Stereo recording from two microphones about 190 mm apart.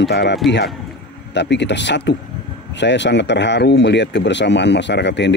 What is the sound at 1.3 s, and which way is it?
Speech, 65° left (ahead or behind).